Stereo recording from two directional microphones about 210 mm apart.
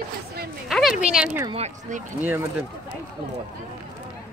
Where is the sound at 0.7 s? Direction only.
Centre (ahead or behind).